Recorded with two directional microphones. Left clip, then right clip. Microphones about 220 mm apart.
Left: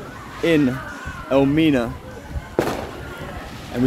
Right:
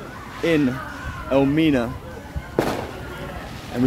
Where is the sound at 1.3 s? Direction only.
10° left (ahead or behind).